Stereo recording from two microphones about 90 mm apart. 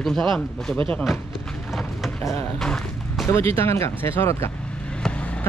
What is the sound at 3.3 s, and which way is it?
Speech, 30° left (ahead or behind).